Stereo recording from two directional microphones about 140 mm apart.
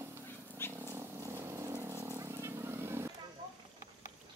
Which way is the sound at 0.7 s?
15° right (ahead or behind).